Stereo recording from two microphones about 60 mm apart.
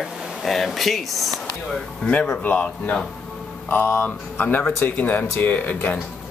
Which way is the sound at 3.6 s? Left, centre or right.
Left.